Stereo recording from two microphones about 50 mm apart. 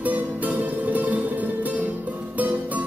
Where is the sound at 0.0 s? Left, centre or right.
Right.